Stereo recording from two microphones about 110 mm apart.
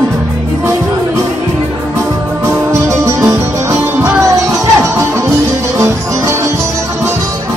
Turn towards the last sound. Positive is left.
turn(degrees=-25)  # may be behind; listen again after turning